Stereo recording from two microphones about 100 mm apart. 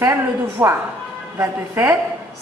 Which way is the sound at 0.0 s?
25° right (ahead or behind).